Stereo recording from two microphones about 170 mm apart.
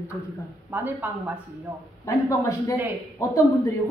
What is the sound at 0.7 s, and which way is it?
Speech, 10° right (ahead or behind).